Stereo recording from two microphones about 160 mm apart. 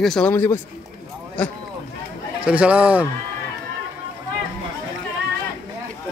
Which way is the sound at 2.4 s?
5° right (ahead or behind).